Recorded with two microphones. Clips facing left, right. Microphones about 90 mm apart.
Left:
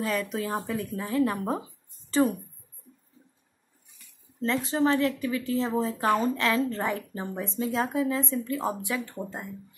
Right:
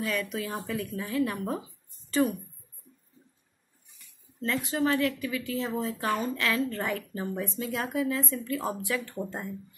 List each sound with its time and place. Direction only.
0.0 s a woman's voice: 35° left (ahead or behind)
4.4 s speech: 30° left (ahead or behind)